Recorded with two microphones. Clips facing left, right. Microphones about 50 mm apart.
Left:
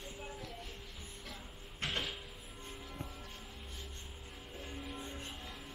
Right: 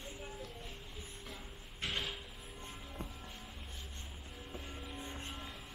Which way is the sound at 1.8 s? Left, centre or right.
Centre.